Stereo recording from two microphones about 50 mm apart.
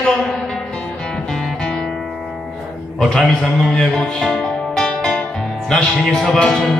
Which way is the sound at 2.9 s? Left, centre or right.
Centre.